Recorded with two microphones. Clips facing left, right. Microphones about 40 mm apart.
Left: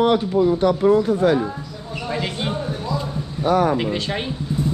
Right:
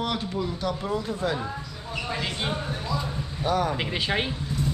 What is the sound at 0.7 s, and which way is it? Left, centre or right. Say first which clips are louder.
Speech: left 12 dB; left.